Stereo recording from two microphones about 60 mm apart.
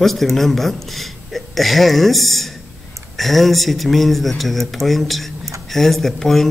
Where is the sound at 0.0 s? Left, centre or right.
Centre.